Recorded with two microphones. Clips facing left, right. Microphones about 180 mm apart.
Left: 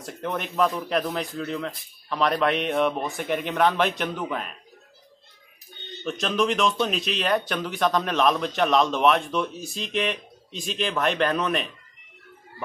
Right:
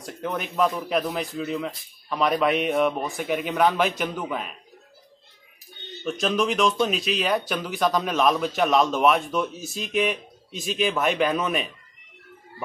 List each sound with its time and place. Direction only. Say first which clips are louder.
0.0 s speech: even; centre (ahead or behind)
6.0 s speech: even; centre (ahead or behind)